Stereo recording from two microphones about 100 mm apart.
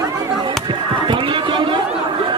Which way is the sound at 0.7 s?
55° right (ahead or behind).